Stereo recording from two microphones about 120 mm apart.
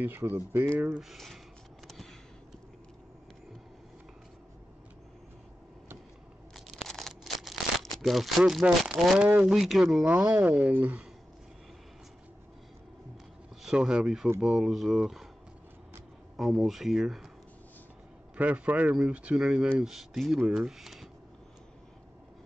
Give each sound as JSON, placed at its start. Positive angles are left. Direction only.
{"t": 0.0, "sound": "speech", "side_deg": -15}
{"t": 1.0, "sound": "speech", "side_deg": 0}
{"t": 6.5, "sound": "a sound", "side_deg": 5}
{"t": 8.0, "sound": "speech", "side_deg": 0}
{"t": 10.2, "sound": "speech", "side_deg": -20}
{"t": 13.6, "sound": "speech", "side_deg": -5}
{"t": 16.3, "sound": "speech", "side_deg": 0}
{"t": 18.3, "sound": "speech", "side_deg": -15}